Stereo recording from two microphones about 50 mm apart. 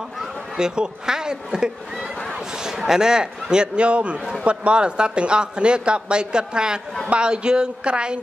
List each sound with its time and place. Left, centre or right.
0.6 s a man's voice: centre